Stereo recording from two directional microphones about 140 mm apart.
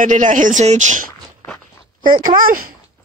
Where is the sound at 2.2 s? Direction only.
80° right.